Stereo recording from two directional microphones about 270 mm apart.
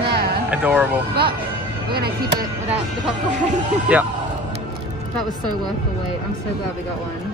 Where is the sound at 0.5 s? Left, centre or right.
Centre.